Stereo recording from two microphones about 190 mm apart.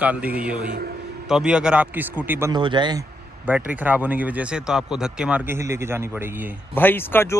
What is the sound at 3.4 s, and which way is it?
Speech, 10° right (ahead or behind).